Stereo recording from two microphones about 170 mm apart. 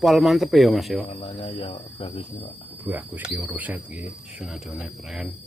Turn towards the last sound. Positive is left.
turn(degrees=0)  # may be behind; listen again after turning